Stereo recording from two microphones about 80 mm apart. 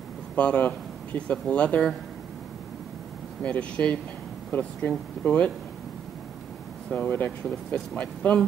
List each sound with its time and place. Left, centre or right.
0.4 s speech: centre
3.4 s speech: centre
6.9 s speech: centre